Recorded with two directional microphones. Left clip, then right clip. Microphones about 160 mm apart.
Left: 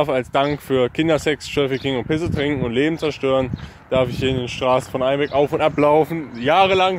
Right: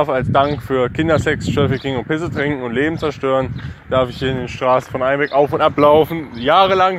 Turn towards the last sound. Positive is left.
turn(degrees=10)  # may be behind; listen again after turning